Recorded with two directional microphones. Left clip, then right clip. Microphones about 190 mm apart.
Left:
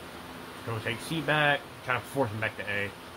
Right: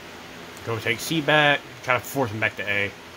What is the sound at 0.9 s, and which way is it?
Speech, 70° right (ahead or behind).